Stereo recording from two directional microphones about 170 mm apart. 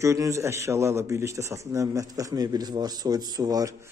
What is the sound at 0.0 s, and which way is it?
Speech, 15° right (ahead or behind).